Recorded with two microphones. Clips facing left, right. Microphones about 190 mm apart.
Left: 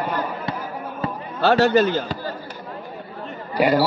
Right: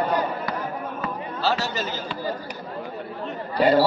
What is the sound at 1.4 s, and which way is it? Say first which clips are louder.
Speech: left 11 dB; 55° left (ahead or behind).